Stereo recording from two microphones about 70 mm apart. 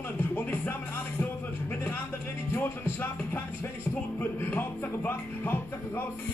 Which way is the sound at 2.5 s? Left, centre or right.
Left.